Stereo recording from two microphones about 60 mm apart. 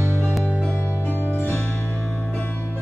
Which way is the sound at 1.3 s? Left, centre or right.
Left.